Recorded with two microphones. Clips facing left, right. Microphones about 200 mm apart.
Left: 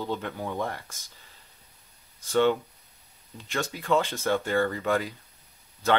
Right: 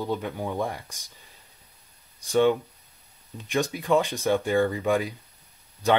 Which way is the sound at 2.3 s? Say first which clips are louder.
Right 2 dB; 15° right (ahead or behind).